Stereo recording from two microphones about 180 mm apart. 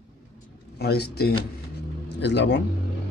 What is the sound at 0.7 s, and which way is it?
Speech, 60° left (ahead or behind).